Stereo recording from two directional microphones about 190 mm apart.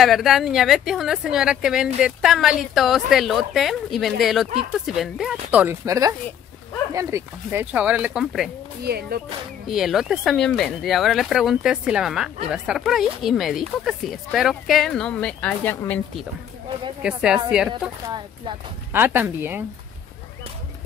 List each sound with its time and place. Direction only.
0.0 s speech: centre (ahead or behind)
8.8 s speech: 55° right (ahead or behind)
9.7 s speech: centre (ahead or behind)
17.0 s speech: 5° right (ahead or behind)
18.0 s speech: 25° right (ahead or behind)
18.9 s speech: 10° right (ahead or behind)